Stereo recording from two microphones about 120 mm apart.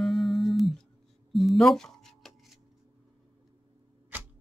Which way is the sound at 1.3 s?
Centre (ahead or behind).